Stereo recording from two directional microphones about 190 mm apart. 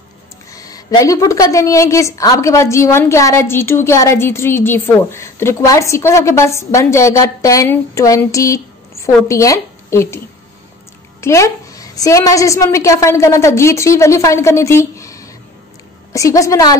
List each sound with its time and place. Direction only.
0.5 s a woman's voice: 20° left (ahead or behind)